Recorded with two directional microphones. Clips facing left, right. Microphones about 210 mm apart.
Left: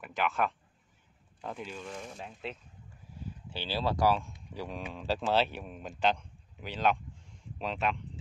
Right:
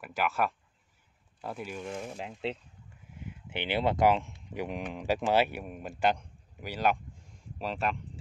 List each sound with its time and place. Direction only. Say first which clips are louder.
0.0 s speech: right 1 dB; 5° right (ahead or behind)
2.4 s speech: right 8 dB; 30° right (ahead or behind); by 8.0 s 5° right (ahead or behind)